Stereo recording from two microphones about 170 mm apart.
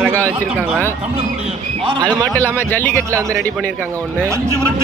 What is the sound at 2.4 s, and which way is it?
Speech, 10° left (ahead or behind).